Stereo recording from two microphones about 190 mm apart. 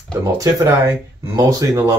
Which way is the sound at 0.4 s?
15° right (ahead or behind).